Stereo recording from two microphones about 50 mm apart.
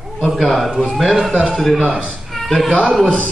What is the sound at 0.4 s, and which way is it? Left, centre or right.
Speech, centre.